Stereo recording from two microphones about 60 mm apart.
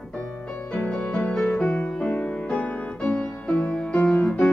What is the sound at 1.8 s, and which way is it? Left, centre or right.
Music, centre.